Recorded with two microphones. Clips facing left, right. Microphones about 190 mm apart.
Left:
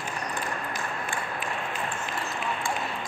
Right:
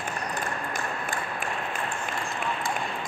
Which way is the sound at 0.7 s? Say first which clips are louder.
Right 1 dB; 50° right (ahead or behind).